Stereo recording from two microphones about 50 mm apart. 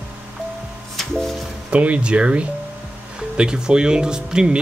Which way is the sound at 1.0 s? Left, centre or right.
Centre.